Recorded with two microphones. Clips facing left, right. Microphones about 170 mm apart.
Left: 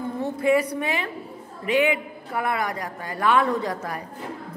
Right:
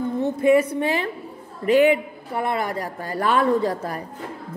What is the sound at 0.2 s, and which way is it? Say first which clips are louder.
A woman's voice: right 4 dB; 20° right (ahead or behind).